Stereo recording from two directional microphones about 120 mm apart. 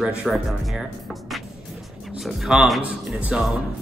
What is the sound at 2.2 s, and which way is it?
Speech, centre (ahead or behind).